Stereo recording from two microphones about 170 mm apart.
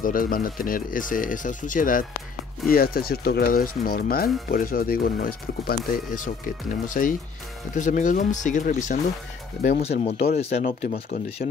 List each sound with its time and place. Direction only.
0.0 s speech: 55° left (ahead or behind)
9.6 s speech: 65° left (ahead or behind)
10.0 s speech: 40° left (ahead or behind)